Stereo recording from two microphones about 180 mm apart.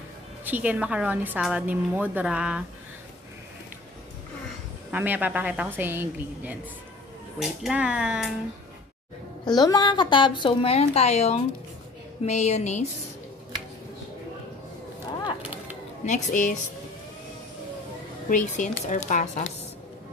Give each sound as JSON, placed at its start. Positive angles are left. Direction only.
{"t": 0.5, "sound": "a woman's voice", "side_deg": -10}
{"t": 4.9, "sound": "a woman's voice", "side_deg": -10}
{"t": 9.4, "sound": "a woman's voice", "side_deg": 25}
{"t": 16.1, "sound": "a woman's voice", "side_deg": 45}
{"t": 18.3, "sound": "speech", "side_deg": 45}